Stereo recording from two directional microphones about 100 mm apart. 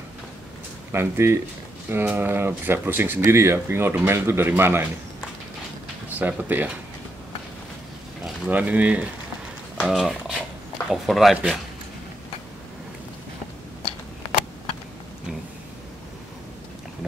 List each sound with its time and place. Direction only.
0.9 s speech: 25° right (ahead or behind)
6.0 s speech: 15° right (ahead or behind)
8.5 s speech: 15° right (ahead or behind)